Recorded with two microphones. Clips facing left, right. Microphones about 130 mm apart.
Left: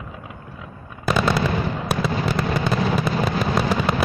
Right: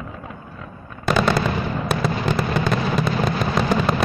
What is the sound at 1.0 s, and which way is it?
Machine gun, 5° left (ahead or behind).